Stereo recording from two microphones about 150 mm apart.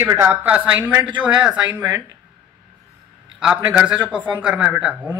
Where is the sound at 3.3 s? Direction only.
5° right (ahead or behind).